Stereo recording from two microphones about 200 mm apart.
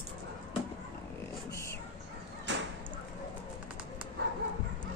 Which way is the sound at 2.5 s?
60° right (ahead or behind).